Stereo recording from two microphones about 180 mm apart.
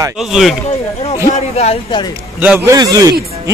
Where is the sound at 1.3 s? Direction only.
35° left (ahead or behind).